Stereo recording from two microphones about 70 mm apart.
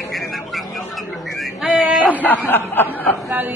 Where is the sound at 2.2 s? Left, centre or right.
Left.